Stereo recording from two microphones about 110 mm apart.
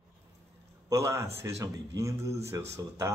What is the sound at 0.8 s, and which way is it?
A man's voice, 30° right (ahead or behind).